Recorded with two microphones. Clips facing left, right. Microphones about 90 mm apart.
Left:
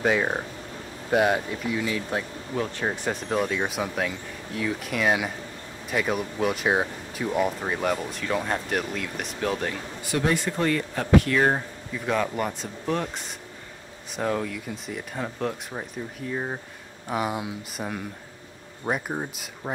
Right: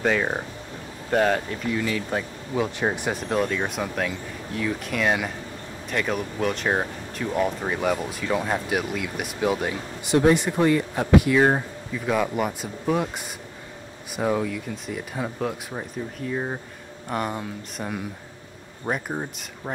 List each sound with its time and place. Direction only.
0.0 s speech: 5° left (ahead or behind)
2.8 s speech: 20° right (ahead or behind)
3.1 s speech: 5° right (ahead or behind)
14.1 s speech: 5° right (ahead or behind)